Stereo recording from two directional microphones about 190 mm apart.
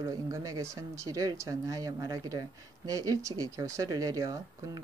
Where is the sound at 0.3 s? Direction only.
15° right (ahead or behind).